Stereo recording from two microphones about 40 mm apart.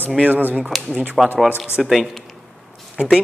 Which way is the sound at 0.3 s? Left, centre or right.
Right.